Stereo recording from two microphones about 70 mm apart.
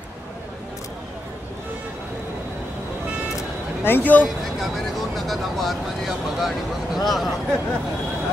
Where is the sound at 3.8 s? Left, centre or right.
Left.